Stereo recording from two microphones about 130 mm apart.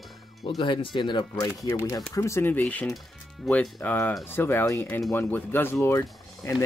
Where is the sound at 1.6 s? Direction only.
20° left (ahead or behind).